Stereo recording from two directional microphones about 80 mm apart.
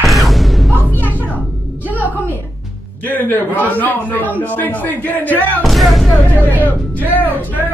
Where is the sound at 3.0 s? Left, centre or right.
Left.